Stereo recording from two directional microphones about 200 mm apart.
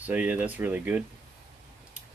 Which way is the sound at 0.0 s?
10° right (ahead or behind).